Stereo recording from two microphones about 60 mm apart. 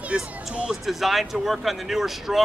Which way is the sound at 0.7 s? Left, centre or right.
Centre.